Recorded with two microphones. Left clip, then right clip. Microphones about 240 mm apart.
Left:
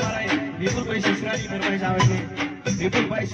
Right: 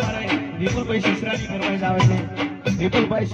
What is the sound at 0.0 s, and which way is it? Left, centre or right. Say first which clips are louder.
Music: even; right.